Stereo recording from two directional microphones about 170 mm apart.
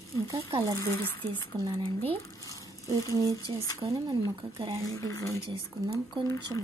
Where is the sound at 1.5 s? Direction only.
20° right (ahead or behind).